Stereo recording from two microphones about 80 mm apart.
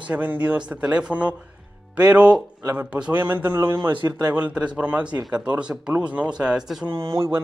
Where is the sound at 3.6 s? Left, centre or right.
Right.